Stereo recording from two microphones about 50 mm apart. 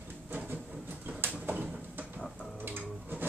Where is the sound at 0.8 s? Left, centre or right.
Right.